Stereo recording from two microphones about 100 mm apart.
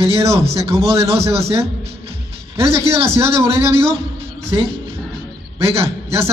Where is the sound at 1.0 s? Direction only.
90° right.